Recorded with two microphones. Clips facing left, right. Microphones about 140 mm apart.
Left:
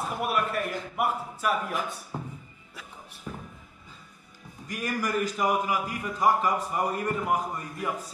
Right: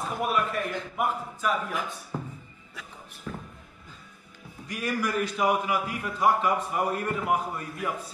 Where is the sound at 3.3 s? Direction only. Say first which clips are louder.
Right 2 dB; 15° left (ahead or behind).